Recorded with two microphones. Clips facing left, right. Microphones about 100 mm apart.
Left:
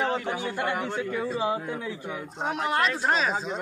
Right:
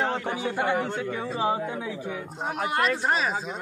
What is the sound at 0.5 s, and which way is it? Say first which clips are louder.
Speech: right 5 dB; 20° right (ahead or behind).